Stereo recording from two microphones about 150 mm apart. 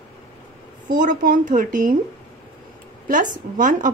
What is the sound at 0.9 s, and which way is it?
A woman's voice, 65° right (ahead or behind).